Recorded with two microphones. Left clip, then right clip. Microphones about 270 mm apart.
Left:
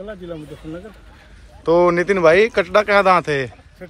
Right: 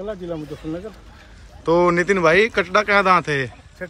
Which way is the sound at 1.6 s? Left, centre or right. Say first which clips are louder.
Left 2 dB; centre.